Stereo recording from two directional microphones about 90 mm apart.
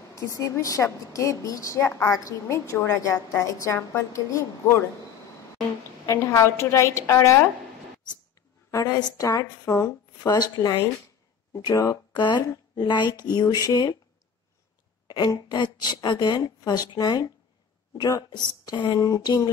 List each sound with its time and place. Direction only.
0.1 s a woman's voice: 35° left (ahead or behind)
1.8 s a woman's voice: 30° left (ahead or behind)
6.0 s a woman's voice: 30° left (ahead or behind)
8.6 s a woman's voice: 40° left (ahead or behind)
10.3 s speech: 50° left (ahead or behind)
11.7 s a woman's voice: 35° left (ahead or behind)
12.1 s speech: 55° left (ahead or behind)
15.0 s a sound: 55° left (ahead or behind)
15.4 s speech: 55° left (ahead or behind)
18.9 s a woman's voice: 40° left (ahead or behind)